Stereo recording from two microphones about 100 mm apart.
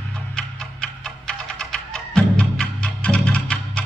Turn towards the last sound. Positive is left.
turn(degrees=10)  # may be behind; listen again after turning